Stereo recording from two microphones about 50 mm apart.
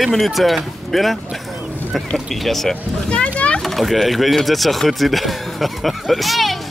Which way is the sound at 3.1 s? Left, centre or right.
Left.